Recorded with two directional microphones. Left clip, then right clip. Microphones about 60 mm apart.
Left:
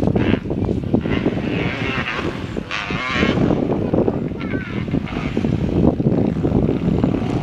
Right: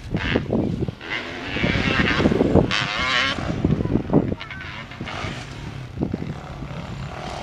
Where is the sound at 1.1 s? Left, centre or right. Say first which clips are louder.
Left 6 dB; right.